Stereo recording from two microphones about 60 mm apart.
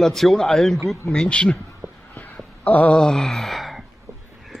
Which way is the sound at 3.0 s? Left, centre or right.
Centre.